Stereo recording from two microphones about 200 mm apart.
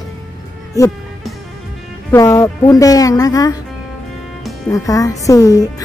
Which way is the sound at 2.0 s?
15° left (ahead or behind).